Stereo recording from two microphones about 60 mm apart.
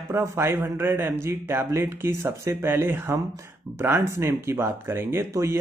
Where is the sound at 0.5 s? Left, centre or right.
Right.